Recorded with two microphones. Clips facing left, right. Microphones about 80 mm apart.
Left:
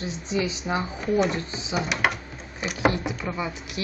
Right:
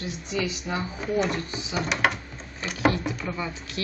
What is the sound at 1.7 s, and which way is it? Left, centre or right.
Speech, centre.